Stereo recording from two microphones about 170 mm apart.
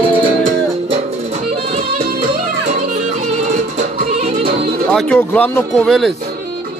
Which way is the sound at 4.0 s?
40° right (ahead or behind).